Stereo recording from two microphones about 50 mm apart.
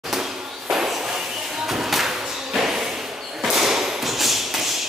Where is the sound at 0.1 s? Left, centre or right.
Centre.